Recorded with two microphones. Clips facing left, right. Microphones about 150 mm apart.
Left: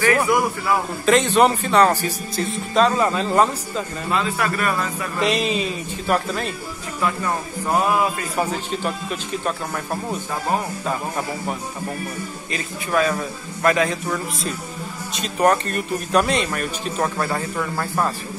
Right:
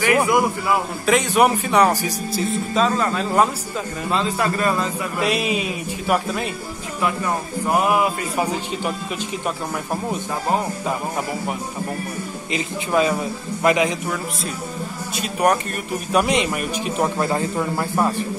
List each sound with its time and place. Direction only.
0.0 s speech: 15° right (ahead or behind)
2.4 s speech: centre (ahead or behind)
4.1 s speech: 30° right (ahead or behind)
5.2 s speech: 10° right (ahead or behind)
7.6 s speech: 15° right (ahead or behind)
12.5 s speech: 20° right (ahead or behind)
15.1 s speech: 10° right (ahead or behind)